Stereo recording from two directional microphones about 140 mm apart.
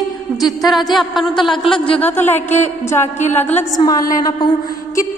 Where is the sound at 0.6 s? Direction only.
Centre (ahead or behind).